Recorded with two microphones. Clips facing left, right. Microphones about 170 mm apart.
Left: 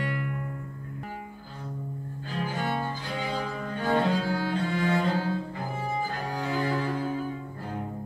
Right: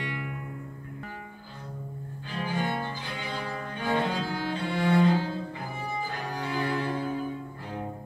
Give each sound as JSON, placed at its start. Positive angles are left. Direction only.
{"t": 2.6, "sound": "cello", "side_deg": 40}
{"t": 6.4, "sound": "cello", "side_deg": 40}